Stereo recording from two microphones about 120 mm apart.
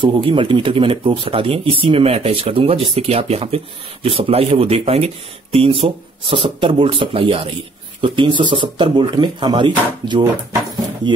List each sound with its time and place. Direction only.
0.0 s speech: 45° right (ahead or behind)